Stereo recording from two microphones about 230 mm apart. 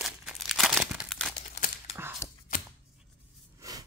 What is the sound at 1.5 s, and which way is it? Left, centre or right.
Crumpling, left.